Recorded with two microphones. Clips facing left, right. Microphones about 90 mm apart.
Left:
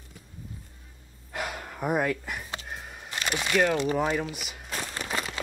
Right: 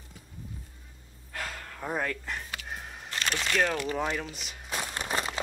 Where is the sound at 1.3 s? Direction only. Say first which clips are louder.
Left 4 dB; 20° left (ahead or behind).